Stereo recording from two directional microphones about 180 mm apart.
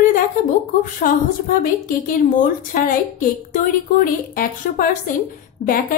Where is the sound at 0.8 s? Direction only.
50° left (ahead or behind).